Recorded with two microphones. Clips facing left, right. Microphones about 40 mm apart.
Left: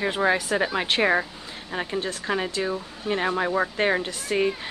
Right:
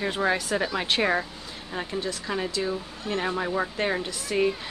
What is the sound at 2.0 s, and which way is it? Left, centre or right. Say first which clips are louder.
Speech: left 2 dB; left.